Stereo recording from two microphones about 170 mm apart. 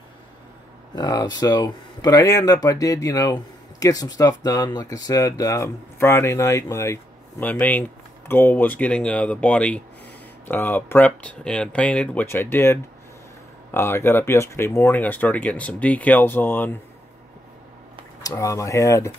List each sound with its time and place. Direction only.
0.9 s speech: 20° left (ahead or behind)
13.7 s speech: 15° left (ahead or behind)
18.2 s speech: 20° left (ahead or behind)